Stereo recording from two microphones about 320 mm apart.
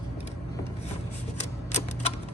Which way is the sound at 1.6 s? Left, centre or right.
Centre.